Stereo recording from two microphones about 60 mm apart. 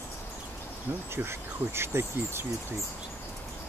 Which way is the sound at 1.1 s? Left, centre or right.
Right.